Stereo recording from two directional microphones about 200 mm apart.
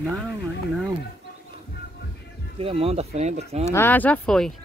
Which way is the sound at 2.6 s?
30° right (ahead or behind).